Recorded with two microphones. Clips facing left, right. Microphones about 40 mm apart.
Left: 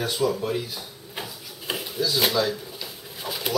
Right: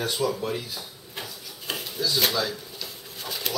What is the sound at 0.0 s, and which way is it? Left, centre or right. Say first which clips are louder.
Speech: left 2 dB; centre.